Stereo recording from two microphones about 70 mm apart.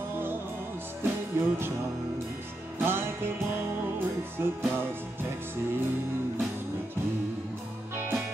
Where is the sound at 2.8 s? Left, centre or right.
Right.